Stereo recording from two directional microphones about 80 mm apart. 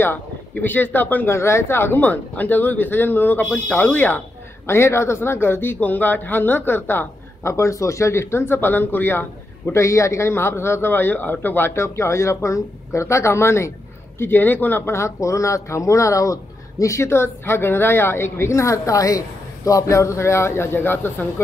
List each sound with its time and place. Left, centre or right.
0.0 s speech: left
4.6 s speech: left